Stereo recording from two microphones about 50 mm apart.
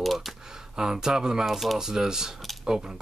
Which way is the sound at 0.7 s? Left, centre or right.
Centre.